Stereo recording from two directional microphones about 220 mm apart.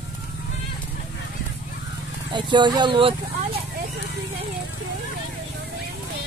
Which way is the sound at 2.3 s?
20° right (ahead or behind).